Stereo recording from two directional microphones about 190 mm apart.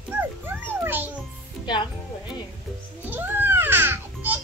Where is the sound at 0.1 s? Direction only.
10° right (ahead or behind).